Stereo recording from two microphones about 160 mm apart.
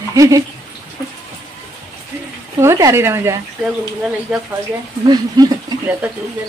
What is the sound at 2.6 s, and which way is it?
Speech, 15° right (ahead or behind).